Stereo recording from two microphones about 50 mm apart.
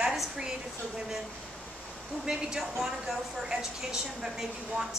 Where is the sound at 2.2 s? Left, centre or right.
Centre.